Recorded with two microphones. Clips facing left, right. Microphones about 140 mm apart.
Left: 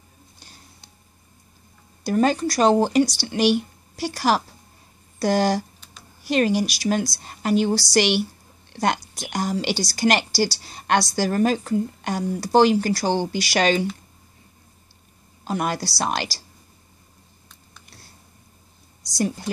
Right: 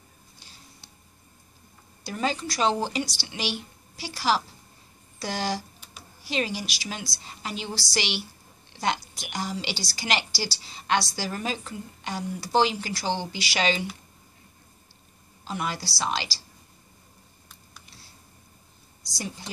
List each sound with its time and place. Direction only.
2.0 s a woman's voice: 50° left (ahead or behind)
15.4 s a woman's voice: 50° left (ahead or behind)
19.1 s a woman's voice: 50° left (ahead or behind)